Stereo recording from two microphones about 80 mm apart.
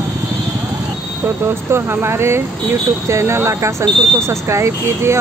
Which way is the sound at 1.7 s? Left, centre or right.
Right.